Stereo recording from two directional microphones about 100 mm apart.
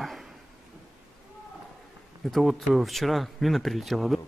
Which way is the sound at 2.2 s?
Centre (ahead or behind).